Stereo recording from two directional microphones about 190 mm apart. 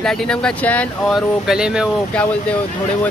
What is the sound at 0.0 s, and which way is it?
Speech, 5° left (ahead or behind).